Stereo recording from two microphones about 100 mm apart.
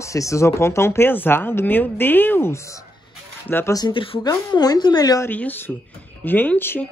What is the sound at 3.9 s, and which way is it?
Speech, 60° left (ahead or behind).